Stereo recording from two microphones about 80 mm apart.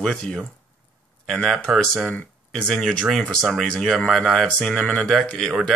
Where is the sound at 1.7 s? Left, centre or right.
Centre.